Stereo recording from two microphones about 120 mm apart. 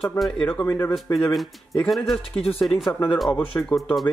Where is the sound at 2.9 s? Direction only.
30° left (ahead or behind).